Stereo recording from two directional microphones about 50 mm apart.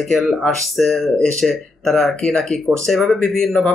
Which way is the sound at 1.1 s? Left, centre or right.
Centre.